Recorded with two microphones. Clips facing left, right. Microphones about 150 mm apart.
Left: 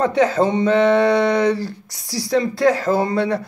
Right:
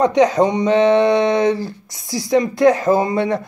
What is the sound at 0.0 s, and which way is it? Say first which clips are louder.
Speech: right 3 dB; 20° right (ahead or behind).